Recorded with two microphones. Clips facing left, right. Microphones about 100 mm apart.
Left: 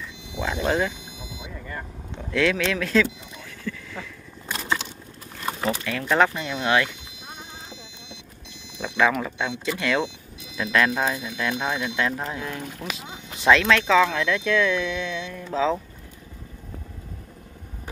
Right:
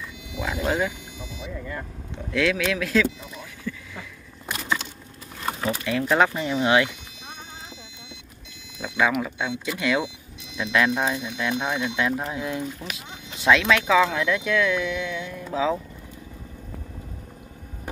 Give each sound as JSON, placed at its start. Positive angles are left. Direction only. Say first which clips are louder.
{"t": 0.4, "sound": "speech", "louder": "left 1 dB", "side_deg": -5}
{"t": 1.7, "sound": "vehicle", "louder": "right 1 dB", "side_deg": -5}
{"t": 5.9, "sound": "speech", "louder": "right 1 dB", "side_deg": -15}
{"t": 8.9, "sound": "speech", "louder": "left 1 dB", "side_deg": -10}
{"t": 11.2, "sound": "speech", "louder": "even", "side_deg": -15}
{"t": 12.7, "sound": "speech", "louder": "left 2 dB", "side_deg": 0}